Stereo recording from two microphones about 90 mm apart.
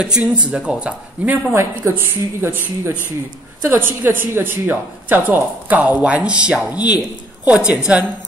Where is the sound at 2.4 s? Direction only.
25° right (ahead or behind).